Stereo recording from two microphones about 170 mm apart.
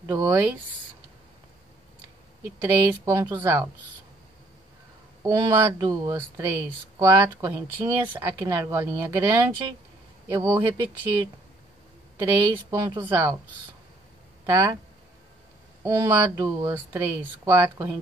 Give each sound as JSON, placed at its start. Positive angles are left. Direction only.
{"t": 0.0, "sound": "speech", "side_deg": -20}
{"t": 2.6, "sound": "speech", "side_deg": -15}
{"t": 5.2, "sound": "speech", "side_deg": -20}
{"t": 12.2, "sound": "speech", "side_deg": -20}
{"t": 14.4, "sound": "speech", "side_deg": -20}
{"t": 15.8, "sound": "speech", "side_deg": -20}